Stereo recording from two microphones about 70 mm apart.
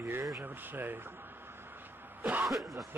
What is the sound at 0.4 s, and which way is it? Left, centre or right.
Speech, right.